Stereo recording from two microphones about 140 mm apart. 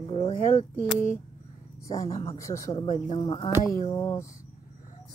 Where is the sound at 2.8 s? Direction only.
35° left (ahead or behind).